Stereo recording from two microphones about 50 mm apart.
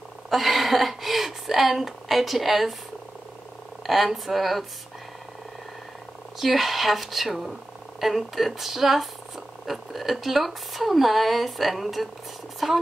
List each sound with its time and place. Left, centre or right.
0.3 s speech: centre
3.8 s speech: centre
6.4 s speech: centre